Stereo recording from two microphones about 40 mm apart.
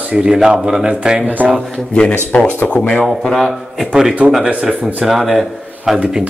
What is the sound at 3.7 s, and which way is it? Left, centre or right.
Speech, centre.